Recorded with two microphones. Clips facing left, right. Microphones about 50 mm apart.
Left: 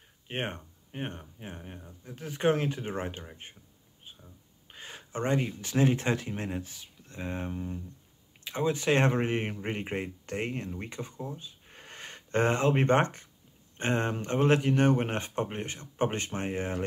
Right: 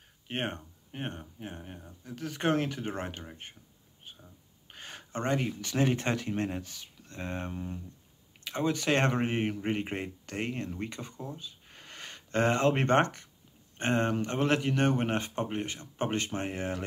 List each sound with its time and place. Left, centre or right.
0.3 s speech: centre
1.9 s speech: centre
4.7 s speech: centre
8.5 s speech: left
11.7 s a sound: left
13.9 s speech: left